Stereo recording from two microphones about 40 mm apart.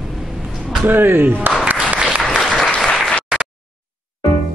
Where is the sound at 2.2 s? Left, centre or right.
Centre.